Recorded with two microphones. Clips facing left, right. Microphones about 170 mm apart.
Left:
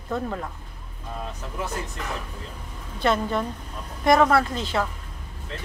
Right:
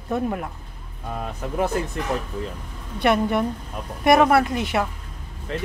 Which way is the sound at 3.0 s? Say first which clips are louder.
Right 4 dB; 15° right (ahead or behind).